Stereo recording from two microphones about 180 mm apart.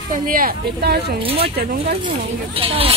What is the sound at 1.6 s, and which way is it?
Speech, 55° right (ahead or behind).